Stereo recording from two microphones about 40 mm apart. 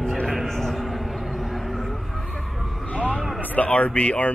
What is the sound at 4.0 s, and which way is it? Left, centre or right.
Speech, left.